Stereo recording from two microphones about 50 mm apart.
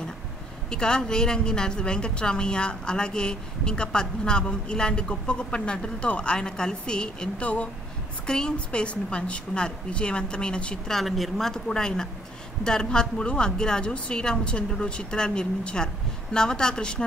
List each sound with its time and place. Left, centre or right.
0.7 s a woman's voice: centre
10.9 s a woman's voice: centre